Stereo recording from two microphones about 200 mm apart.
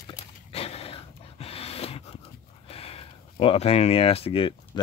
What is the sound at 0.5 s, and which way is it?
Dog, 30° left (ahead or behind).